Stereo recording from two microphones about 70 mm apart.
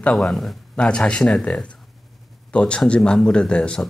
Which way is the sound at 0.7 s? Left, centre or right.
Centre.